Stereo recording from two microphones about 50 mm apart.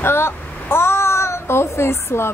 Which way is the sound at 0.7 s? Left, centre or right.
Left.